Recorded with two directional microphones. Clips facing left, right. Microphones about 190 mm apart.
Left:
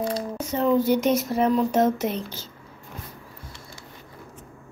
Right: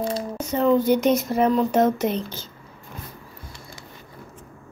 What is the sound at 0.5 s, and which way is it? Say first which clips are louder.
Speech: right 2 dB; 5° left (ahead or behind).